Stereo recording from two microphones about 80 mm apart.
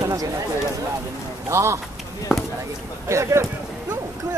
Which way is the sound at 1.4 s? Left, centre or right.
Right.